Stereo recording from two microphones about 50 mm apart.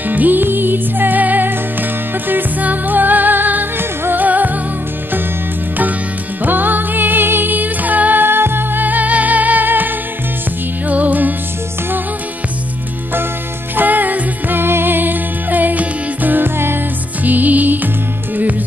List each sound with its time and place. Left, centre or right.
0.1 s music: right
6.4 s music: right
13.7 s music: right
17.2 s music: right